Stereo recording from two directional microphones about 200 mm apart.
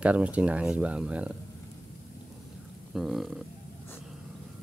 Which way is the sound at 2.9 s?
Centre (ahead or behind).